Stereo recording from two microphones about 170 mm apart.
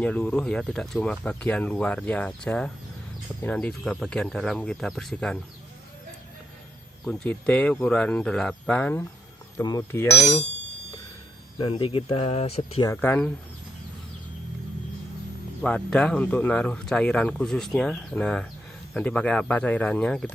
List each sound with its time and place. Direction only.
0.0 s speech: 5° left (ahead or behind)
7.1 s speech: 5° left (ahead or behind)
9.6 s speech: 20° left (ahead or behind)
11.5 s speech: 30° left (ahead or behind)
12.8 s speech: 10° left (ahead or behind)
15.6 s speech: 5° left (ahead or behind)